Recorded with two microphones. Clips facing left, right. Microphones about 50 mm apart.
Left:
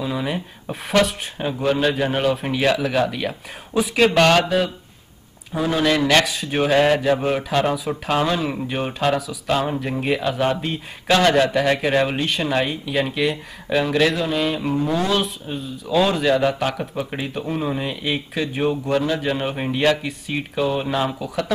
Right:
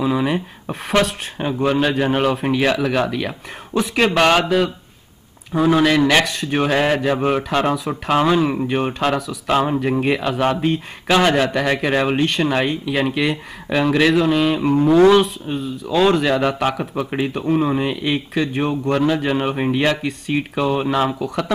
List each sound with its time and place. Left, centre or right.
0.0 s speech: centre
16.8 s speech: centre